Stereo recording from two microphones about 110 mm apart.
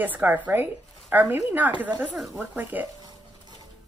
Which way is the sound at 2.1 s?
Centre (ahead or behind).